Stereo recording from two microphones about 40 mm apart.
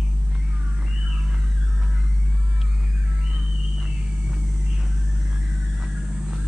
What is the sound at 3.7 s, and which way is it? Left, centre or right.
Vehicle, right.